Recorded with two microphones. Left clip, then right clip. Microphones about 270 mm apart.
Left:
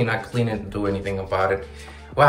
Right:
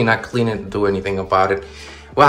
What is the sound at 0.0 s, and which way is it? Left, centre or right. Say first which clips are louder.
Speech: right 7 dB; centre.